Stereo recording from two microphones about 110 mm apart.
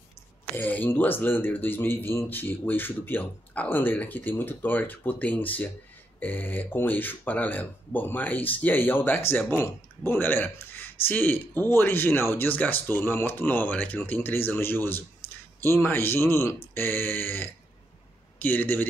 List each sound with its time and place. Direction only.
0.6 s speech: 15° left (ahead or behind)